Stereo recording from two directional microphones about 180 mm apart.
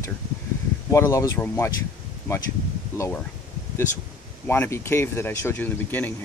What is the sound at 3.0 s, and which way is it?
Speech, 10° left (ahead or behind).